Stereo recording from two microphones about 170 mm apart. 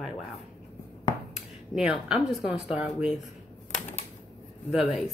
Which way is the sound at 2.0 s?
5° right (ahead or behind).